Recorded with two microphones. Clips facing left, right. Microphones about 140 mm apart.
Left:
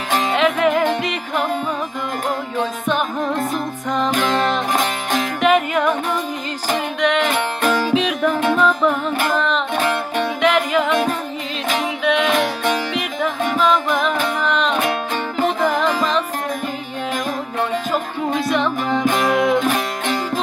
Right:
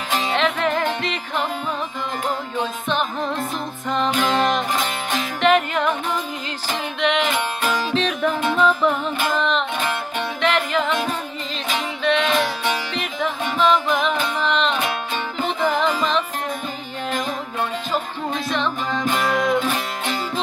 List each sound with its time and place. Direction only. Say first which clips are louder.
0.3 s music: left 5 dB; 5° left (ahead or behind)
5.4 s music: left 1 dB; 5° left (ahead or behind)
7.0 s music: left 1 dB; centre (ahead or behind)
12.0 s music: left 1 dB; 5° left (ahead or behind)
13.6 s music: even; centre (ahead or behind)
18.5 s music: left 3 dB; 10° left (ahead or behind)
19.6 s music: left 4 dB; 45° left (ahead or behind)